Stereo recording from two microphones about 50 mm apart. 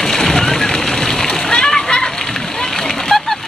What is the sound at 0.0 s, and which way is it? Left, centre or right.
Splash, centre.